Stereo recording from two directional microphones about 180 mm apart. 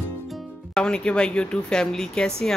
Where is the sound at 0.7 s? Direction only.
5° left (ahead or behind).